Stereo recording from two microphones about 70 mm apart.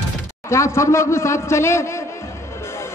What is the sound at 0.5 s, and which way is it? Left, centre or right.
A man's voice, left.